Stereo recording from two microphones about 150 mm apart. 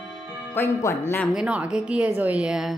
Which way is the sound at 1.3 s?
5° right (ahead or behind).